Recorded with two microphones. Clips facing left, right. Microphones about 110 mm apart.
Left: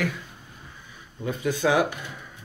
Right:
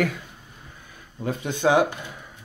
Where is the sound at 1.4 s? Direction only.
20° right (ahead or behind).